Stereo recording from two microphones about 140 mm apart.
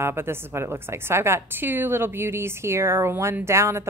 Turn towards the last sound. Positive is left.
turn(degrees=-20)  # may be behind; listen again after turning